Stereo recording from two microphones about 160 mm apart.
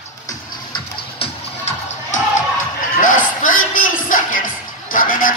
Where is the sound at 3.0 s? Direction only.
55° left (ahead or behind).